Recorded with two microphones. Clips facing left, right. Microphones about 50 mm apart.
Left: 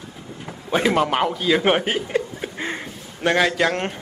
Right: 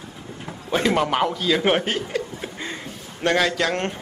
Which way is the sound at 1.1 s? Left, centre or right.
Centre.